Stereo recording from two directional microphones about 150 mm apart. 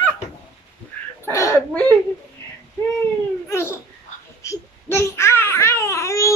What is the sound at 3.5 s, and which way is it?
Speech, 15° left (ahead or behind).